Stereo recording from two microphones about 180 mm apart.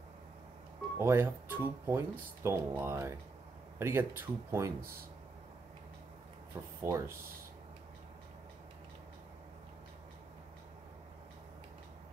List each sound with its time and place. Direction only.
0.9 s speech: 15° right (ahead or behind)
6.8 s speech: 15° right (ahead or behind)